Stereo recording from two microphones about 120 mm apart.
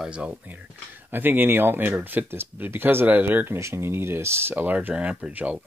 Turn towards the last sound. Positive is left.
turn(degrees=-10)  # may be behind; listen again after turning